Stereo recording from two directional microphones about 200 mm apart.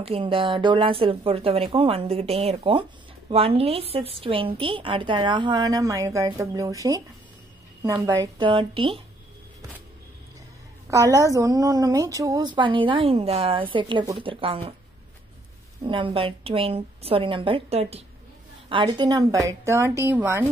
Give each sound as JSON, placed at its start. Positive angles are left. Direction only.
{"t": 0.0, "sound": "a woman's voice", "side_deg": -25}
{"t": 10.9, "sound": "a woman's voice", "side_deg": -15}
{"t": 15.8, "sound": "a woman's voice", "side_deg": -25}